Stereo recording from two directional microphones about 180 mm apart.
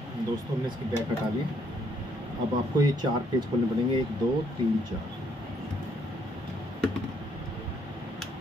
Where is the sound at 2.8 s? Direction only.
25° right (ahead or behind).